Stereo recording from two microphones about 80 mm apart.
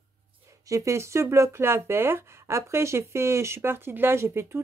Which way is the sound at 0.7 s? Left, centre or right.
Right.